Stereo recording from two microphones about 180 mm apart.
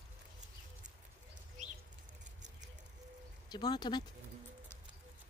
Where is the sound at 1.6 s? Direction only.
40° right (ahead or behind).